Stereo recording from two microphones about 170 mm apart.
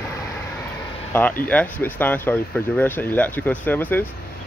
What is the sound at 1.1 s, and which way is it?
Speech, 10° left (ahead or behind).